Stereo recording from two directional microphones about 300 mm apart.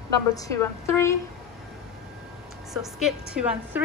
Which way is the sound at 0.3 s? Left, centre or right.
Centre.